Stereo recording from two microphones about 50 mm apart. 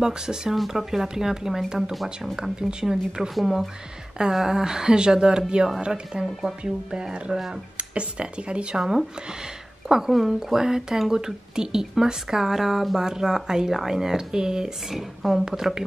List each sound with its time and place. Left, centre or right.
0.0 s speech: centre